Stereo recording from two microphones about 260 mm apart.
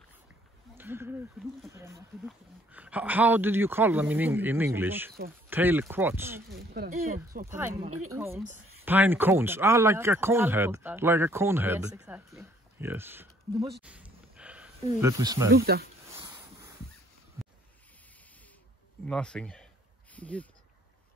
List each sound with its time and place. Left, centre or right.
0.7 s a man's voice: centre
6.5 s speech: right
6.9 s speech: right
7.4 s a man's voice: centre
13.8 s a sound: centre
15.5 s speech: right
16.1 s a sound: centre
19.0 s speech: centre